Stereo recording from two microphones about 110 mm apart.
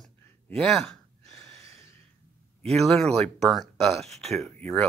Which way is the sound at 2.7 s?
5° left (ahead or behind).